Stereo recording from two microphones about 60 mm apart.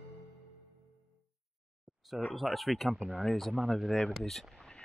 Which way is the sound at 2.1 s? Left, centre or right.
Centre.